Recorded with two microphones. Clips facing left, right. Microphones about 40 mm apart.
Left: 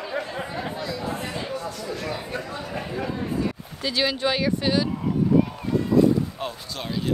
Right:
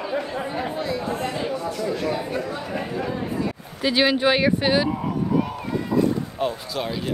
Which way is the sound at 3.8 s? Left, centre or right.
Right.